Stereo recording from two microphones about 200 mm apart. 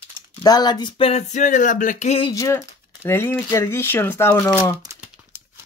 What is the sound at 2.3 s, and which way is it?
Speech, 15° left (ahead or behind).